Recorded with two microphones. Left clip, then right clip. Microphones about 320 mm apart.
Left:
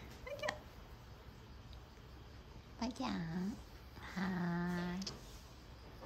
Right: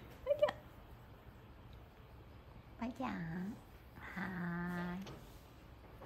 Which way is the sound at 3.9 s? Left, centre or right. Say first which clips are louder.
Left 1 dB; centre.